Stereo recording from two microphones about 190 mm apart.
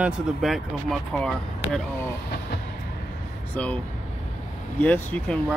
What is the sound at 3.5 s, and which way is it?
Speech, 5° left (ahead or behind).